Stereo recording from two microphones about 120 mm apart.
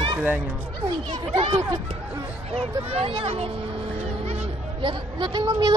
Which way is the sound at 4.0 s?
65° right (ahead or behind).